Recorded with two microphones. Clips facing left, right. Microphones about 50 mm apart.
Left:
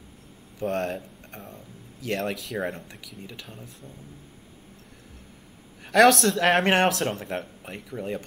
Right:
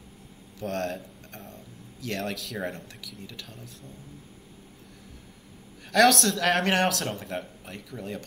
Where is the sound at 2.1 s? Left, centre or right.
Centre.